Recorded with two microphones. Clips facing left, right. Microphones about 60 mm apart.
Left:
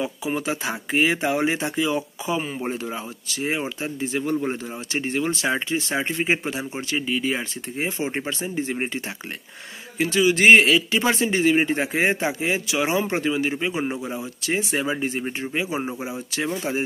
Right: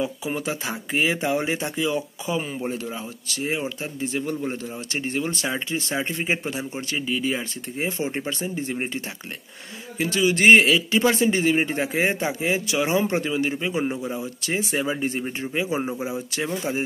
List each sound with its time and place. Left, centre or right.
0.0 s speech: centre
9.9 s speech: centre
14.2 s speech: centre